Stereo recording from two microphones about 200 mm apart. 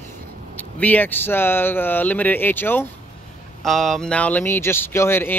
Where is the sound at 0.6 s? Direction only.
10° left (ahead or behind).